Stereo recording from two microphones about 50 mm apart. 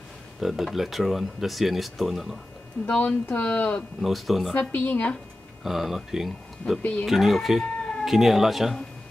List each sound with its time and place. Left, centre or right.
0.4 s speech: centre
2.8 s speech: centre
3.3 s speech: left
4.0 s speech: centre
4.6 s speech: left
5.6 s speech: centre
6.8 s speech: left
7.1 s speech: centre